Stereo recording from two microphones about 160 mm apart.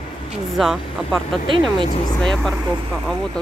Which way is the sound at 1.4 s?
30° right (ahead or behind).